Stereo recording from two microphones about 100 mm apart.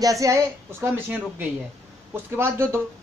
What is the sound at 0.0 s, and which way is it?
A woman's voice, 35° right (ahead or behind).